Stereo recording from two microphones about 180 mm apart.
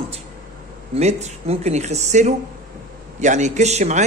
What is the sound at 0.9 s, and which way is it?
A man's voice, 35° right (ahead or behind).